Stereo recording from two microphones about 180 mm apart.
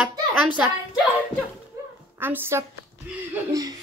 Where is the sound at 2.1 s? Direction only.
10° right (ahead or behind).